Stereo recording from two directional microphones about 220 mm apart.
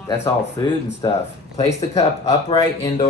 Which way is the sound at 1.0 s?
15° left (ahead or behind).